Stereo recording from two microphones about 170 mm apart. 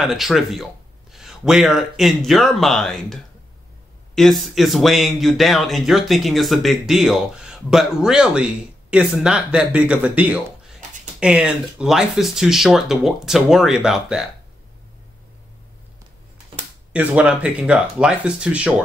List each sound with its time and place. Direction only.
0.0 s speech: centre (ahead or behind)
16.9 s speech: 5° right (ahead or behind)